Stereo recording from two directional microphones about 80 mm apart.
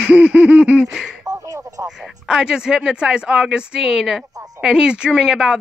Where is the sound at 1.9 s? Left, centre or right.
Centre.